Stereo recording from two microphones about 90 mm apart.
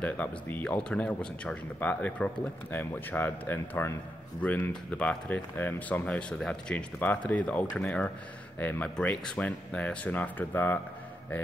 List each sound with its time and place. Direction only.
0.0 s speech: 20° left (ahead or behind)
4.4 s speech: 15° left (ahead or behind)